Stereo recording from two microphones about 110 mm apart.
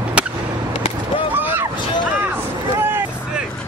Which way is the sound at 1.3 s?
15° right (ahead or behind).